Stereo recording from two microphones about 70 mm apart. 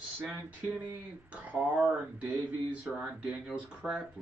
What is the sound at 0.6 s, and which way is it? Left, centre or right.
Speech, right.